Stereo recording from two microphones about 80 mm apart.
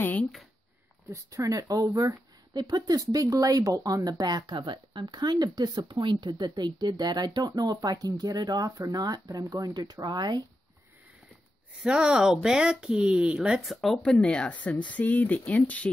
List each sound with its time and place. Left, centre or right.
1.1 s speech: right
11.8 s speech: centre
13.7 s speech: centre